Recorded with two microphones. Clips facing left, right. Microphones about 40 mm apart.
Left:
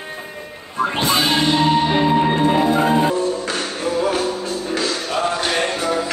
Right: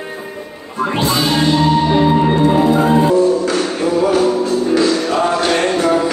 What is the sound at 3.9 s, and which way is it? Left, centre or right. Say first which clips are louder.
Music: right 7 dB; centre.